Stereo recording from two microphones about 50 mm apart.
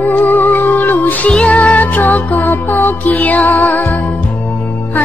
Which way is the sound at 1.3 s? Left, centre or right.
Left.